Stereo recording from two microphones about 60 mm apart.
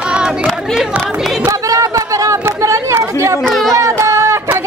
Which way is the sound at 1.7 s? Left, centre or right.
Right.